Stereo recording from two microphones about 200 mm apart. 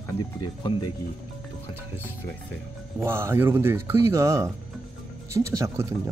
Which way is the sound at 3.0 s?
15° right (ahead or behind).